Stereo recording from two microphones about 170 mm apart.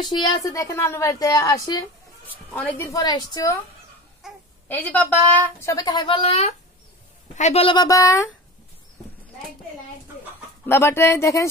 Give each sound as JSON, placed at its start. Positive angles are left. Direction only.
{"t": 0.0, "sound": "a woman's voice", "side_deg": 25}
{"t": 2.2, "sound": "speech", "side_deg": 10}
{"t": 4.2, "sound": "babbling", "side_deg": 0}
{"t": 4.6, "sound": "a woman's voice", "side_deg": 10}
{"t": 10.7, "sound": "a woman's voice", "side_deg": 15}